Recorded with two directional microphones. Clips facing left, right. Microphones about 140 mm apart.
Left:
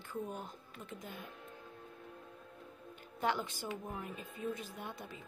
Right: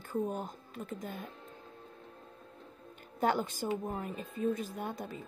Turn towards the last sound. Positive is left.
turn(degrees=-45)  # may be behind; listen again after turning